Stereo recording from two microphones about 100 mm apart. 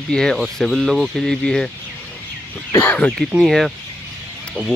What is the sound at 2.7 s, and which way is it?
Speech, 20° left (ahead or behind).